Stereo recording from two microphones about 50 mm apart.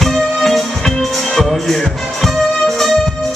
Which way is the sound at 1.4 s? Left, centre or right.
Centre.